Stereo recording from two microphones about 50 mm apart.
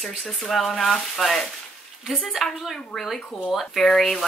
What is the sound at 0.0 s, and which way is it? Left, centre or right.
Speech, centre.